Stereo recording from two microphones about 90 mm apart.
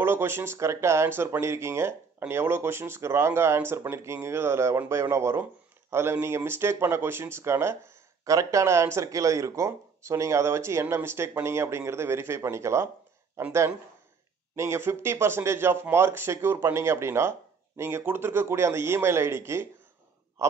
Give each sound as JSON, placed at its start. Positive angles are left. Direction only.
{"t": 0.0, "sound": "speech", "side_deg": -25}